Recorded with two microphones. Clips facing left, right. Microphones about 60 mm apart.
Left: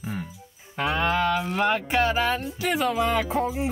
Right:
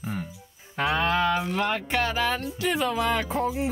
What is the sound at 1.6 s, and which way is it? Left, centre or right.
Speech, left.